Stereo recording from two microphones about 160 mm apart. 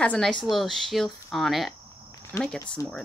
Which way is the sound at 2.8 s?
20° left (ahead or behind).